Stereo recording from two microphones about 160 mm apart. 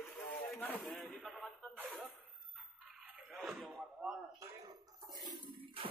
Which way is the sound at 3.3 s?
Centre (ahead or behind).